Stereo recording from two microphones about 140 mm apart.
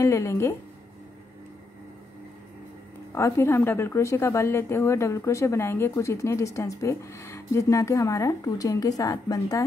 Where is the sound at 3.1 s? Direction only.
20° left (ahead or behind).